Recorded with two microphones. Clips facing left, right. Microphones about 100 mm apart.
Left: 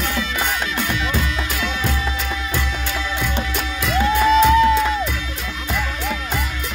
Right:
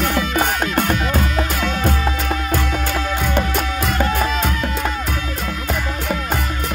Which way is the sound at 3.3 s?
45° right (ahead or behind).